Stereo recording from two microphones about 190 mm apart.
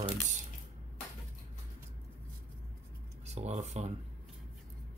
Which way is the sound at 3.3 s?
35° right (ahead or behind).